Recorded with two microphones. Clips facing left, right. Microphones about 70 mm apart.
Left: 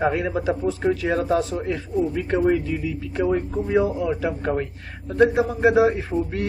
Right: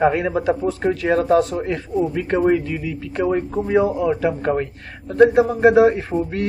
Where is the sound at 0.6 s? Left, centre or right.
Right.